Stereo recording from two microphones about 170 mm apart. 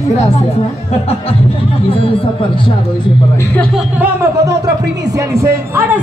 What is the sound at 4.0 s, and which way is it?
Speech, 15° right (ahead or behind).